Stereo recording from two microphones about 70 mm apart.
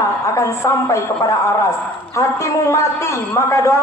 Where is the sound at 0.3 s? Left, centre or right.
Left.